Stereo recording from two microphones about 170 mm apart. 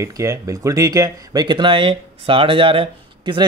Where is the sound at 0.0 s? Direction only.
20° right (ahead or behind).